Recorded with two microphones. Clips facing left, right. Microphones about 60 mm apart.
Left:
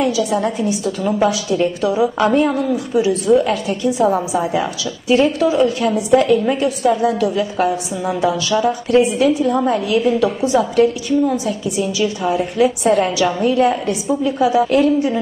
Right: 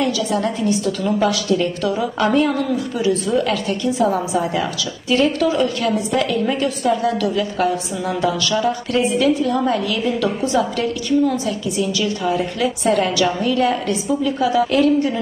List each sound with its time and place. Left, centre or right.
0.0 s a woman's voice: centre